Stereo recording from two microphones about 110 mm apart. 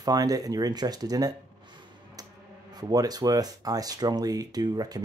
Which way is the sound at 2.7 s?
35° right (ahead or behind).